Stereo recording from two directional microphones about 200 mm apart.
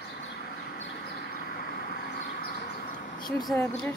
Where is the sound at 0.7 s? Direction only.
55° left (ahead or behind).